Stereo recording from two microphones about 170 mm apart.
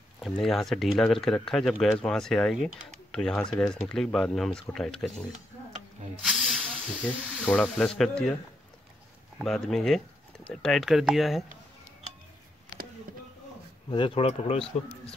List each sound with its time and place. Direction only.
0.2 s speech: centre (ahead or behind)
6.2 s snake: centre (ahead or behind)
7.4 s speech: 5° left (ahead or behind)
9.4 s speech: centre (ahead or behind)
13.8 s speech: 30° left (ahead or behind)